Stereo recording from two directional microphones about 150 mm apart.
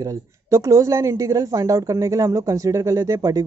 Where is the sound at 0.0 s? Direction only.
20° right (ahead or behind).